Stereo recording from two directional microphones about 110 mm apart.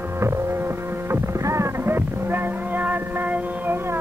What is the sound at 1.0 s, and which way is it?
Music, 25° right (ahead or behind).